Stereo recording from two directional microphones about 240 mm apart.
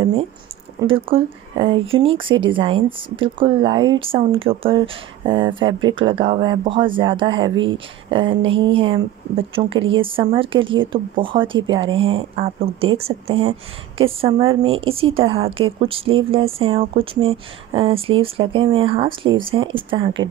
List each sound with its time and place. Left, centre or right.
0.0 s a sound: right
0.7 s speech: right
7.5 s speech: right
8.1 s speech: right